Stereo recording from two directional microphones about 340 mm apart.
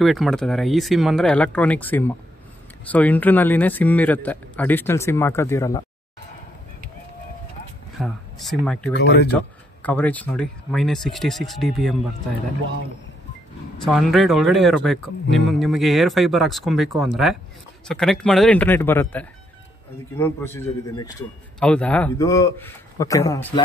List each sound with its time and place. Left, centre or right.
0.0 s a man's voice: centre
8.0 s speech: centre
8.9 s speech: left
9.3 s a man's voice: centre
13.8 s a man's voice: centre